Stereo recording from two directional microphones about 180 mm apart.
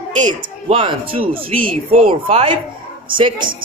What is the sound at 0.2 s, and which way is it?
A woman's voice, 25° right (ahead or behind).